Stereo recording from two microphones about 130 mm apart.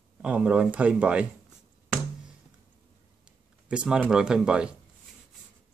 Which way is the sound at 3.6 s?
10° right (ahead or behind).